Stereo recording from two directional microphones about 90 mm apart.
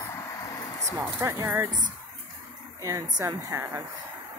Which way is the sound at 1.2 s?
35° right (ahead or behind).